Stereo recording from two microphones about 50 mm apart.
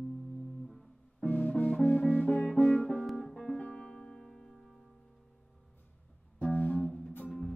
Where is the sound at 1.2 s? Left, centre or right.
Left.